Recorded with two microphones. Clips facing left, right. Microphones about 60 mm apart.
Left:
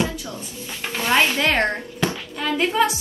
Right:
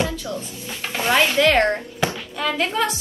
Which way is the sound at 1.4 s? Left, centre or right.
Left.